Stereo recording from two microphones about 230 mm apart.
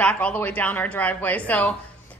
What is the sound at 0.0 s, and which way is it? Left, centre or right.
A woman's voice, centre.